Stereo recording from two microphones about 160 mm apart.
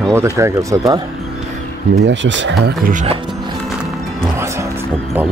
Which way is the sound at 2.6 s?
60° right (ahead or behind).